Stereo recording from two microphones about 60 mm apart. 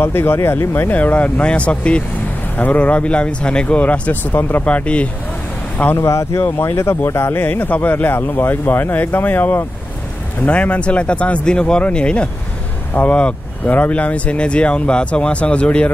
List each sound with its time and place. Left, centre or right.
0.0 s speech: left
0.9 s speech: left
4.3 s speech: left
4.6 s speech: left
5.9 s speech: left
7.4 s speech: left
10.4 s speech: left